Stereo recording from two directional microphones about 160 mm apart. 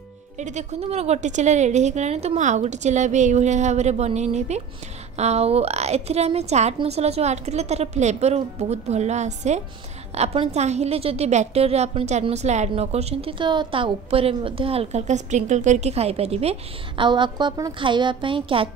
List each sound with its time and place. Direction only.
0.4 s a woman's voice: 45° right (ahead or behind)